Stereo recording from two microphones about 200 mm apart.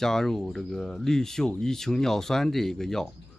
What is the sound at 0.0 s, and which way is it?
Speech, centre (ahead or behind).